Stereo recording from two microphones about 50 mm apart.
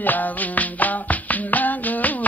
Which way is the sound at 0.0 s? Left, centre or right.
Left.